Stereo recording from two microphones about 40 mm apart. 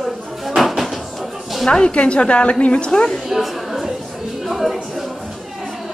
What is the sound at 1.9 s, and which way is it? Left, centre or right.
A woman's voice, left.